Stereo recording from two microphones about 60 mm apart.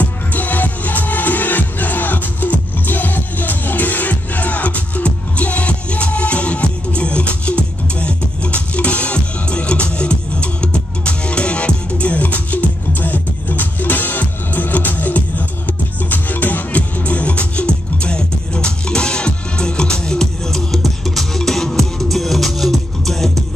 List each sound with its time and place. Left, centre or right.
0.0 s music: left; by 23.3 s centre